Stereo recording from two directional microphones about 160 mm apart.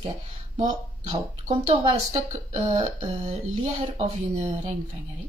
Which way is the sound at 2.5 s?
45° right (ahead or behind).